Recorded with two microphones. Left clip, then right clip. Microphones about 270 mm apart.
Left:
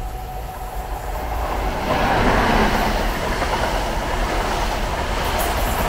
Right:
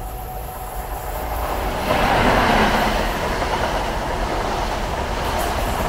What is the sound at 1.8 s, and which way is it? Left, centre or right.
Vehicle, centre.